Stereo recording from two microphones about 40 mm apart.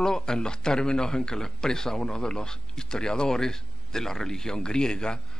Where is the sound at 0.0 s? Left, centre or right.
Centre.